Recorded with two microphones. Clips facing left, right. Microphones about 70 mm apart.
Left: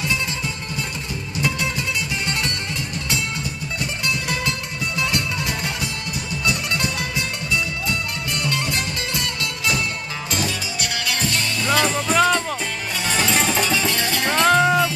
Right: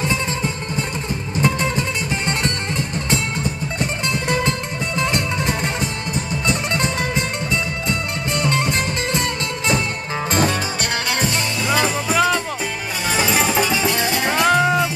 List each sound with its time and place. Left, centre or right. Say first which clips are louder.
1.4 s music: right 4 dB; right
4.1 s music: right 4 dB; right
11.6 s music: even; centre